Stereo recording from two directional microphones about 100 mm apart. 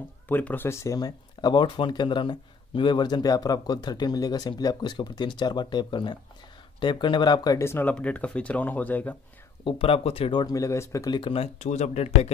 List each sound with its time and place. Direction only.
0.3 s speech: 15° left (ahead or behind)
0.7 s speech: 30° left (ahead or behind); by 7.5 s 45° left (ahead or behind)
7.5 s speech: 25° left (ahead or behind)
7.9 s speech: 15° left (ahead or behind)
9.7 s speech: 70° left (ahead or behind)
10.4 s speech: 35° left (ahead or behind)
11.1 s speech: 60° left (ahead or behind); by 12.3 s 90° left